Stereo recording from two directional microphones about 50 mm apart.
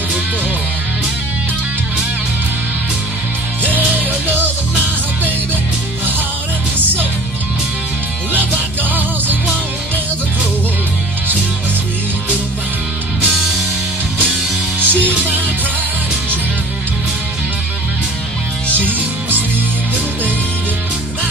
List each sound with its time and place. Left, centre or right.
14.9 s music: left
18.9 s music: right